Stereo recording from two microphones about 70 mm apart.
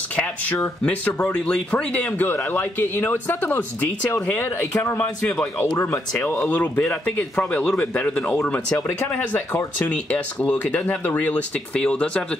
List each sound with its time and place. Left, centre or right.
0.1 s speech: centre
2.2 s speech: left
4.9 s speech: centre
5.8 s speech: left
6.5 s speech: left